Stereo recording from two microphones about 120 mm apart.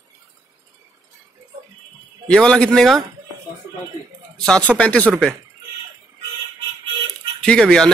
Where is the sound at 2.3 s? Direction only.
10° left (ahead or behind).